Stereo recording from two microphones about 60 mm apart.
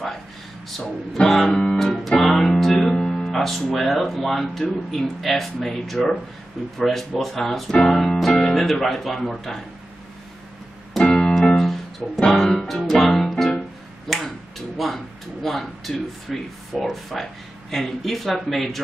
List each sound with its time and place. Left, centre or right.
1.1 s music: centre
3.7 s speech: centre
7.9 s music: centre
8.5 s speech: centre
10.9 s music: centre
14.8 s speech: centre